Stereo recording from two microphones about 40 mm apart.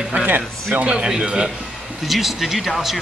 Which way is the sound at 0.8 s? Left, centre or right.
Right.